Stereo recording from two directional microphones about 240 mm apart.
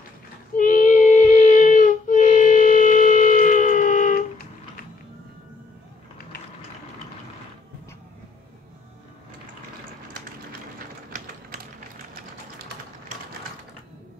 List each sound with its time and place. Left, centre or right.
0.6 s child singing: left